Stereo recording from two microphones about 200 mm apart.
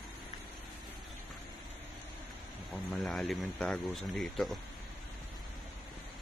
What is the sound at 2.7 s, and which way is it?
Speech, centre (ahead or behind).